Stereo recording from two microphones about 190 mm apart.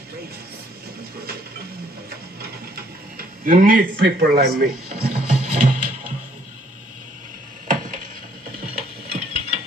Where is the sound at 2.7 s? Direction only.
50° right (ahead or behind).